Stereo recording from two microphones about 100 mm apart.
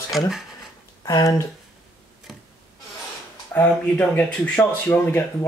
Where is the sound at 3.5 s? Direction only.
20° left (ahead or behind).